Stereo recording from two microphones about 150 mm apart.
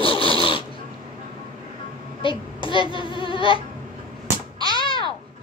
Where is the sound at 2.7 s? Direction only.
35° left (ahead or behind).